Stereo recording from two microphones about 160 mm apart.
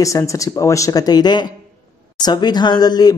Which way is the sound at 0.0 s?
20° left (ahead or behind).